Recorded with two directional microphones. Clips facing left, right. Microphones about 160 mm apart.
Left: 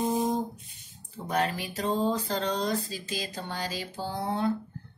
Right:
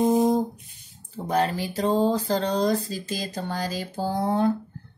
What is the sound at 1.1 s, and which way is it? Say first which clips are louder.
Speech: right 5 dB; 35° right (ahead or behind).